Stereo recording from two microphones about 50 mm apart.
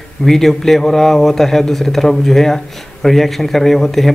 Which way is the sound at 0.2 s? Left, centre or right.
Centre.